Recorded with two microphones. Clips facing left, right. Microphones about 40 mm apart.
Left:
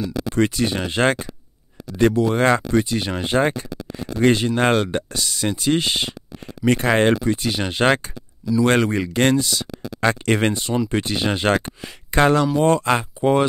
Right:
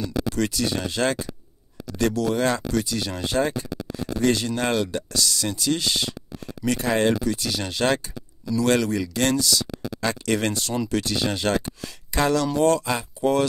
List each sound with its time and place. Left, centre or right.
0.0 s speech: centre
0.3 s speech: left
2.3 s speech: left
12.9 s speech: left
13.2 s speech: left